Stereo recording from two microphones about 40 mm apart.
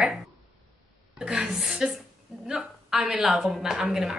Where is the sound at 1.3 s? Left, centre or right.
Centre.